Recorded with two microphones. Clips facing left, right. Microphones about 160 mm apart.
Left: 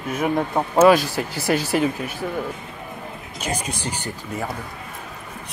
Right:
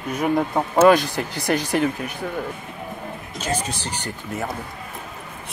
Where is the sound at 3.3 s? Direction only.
10° left (ahead or behind).